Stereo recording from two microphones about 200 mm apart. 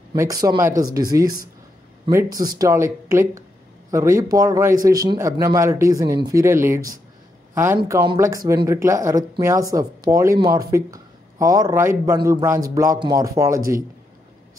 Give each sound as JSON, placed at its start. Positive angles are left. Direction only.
{"t": 0.1, "sound": "speech", "side_deg": -15}